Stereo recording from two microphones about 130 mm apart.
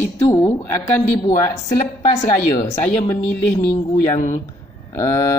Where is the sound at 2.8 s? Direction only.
10° left (ahead or behind).